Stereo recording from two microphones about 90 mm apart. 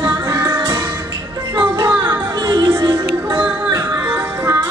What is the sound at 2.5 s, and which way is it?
Music, 60° right (ahead or behind).